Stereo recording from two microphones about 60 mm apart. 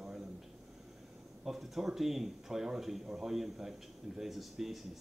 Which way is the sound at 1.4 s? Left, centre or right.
Centre.